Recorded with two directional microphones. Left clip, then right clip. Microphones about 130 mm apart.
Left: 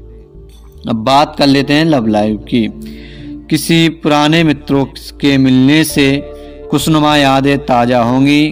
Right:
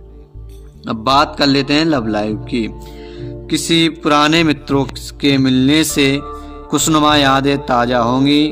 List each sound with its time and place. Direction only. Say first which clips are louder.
0.8 s a man's voice: left 3 dB; 20° left (ahead or behind)